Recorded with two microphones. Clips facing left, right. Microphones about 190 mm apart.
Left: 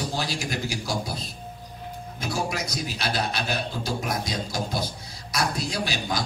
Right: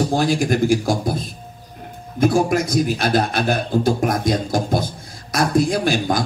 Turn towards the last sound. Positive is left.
turn(degrees=-50)  # may be behind; listen again after turning